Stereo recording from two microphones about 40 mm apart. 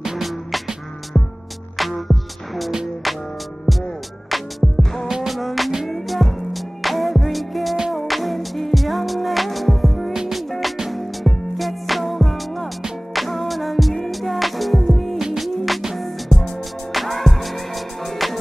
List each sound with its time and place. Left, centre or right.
0.0 s music: centre
1.1 s music: left
1.8 s music: centre
10.1 s music: centre
11.0 s music: centre
15.1 s music: centre
15.4 s music: centre